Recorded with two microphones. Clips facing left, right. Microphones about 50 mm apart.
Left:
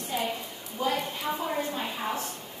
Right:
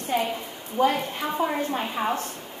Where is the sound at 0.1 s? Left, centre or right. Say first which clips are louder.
Right 5 dB; right.